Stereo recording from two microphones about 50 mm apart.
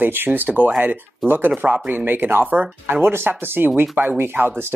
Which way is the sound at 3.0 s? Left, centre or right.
Right.